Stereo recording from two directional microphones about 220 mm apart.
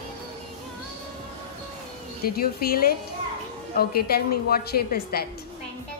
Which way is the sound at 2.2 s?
45° left (ahead or behind).